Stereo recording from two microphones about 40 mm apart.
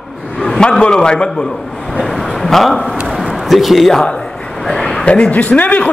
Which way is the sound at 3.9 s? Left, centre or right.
Centre.